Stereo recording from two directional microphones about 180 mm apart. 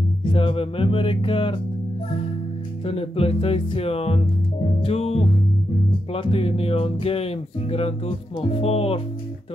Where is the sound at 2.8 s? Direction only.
30° left (ahead or behind).